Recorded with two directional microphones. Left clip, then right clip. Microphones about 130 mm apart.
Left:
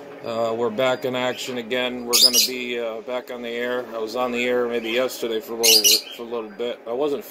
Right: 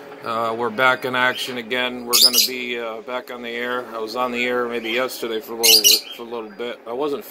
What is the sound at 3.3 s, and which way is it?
Speech, 15° left (ahead or behind).